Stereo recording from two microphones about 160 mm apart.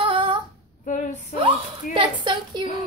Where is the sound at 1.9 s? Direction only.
30° right (ahead or behind).